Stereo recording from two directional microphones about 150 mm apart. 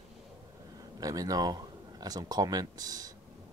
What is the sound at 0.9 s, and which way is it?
Speech, 25° right (ahead or behind).